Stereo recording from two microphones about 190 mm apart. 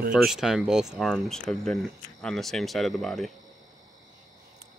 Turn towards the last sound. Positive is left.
turn(degrees=0)  # may be behind; listen again after turning